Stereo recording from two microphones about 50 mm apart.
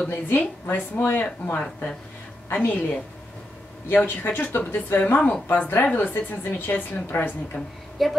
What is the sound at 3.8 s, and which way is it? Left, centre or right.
Speech, left.